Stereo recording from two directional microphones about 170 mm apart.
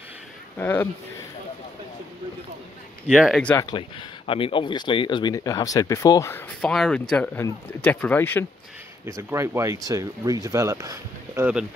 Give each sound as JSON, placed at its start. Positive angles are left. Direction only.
{"t": 0.6, "sound": "speech", "side_deg": 10}
{"t": 3.1, "sound": "speech", "side_deg": 0}
{"t": 4.3, "sound": "speech", "side_deg": 30}
{"t": 6.6, "sound": "speech", "side_deg": 5}
{"t": 9.0, "sound": "speech", "side_deg": -15}